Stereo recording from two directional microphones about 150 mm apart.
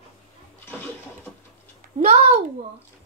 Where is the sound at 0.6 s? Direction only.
15° left (ahead or behind).